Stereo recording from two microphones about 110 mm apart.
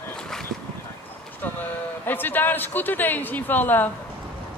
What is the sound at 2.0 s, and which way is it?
Speech, 15° left (ahead or behind).